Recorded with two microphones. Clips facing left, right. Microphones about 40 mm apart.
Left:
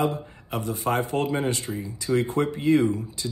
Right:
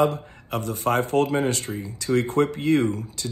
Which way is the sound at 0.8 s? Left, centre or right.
Centre.